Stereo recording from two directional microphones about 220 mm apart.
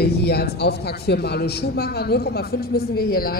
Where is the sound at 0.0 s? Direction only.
45° left (ahead or behind).